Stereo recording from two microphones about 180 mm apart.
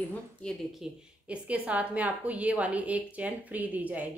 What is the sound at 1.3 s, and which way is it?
A woman's voice, 5° right (ahead or behind).